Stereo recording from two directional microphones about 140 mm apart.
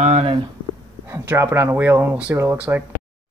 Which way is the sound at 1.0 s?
15° right (ahead or behind).